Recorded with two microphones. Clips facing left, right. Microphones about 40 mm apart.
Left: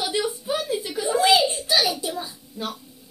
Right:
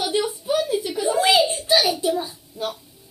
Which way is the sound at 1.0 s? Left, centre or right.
Centre.